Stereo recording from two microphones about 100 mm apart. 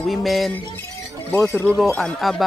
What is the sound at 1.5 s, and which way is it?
Speech, 20° left (ahead or behind).